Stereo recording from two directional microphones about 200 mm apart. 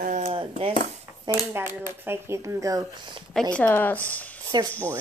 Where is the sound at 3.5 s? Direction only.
10° left (ahead or behind).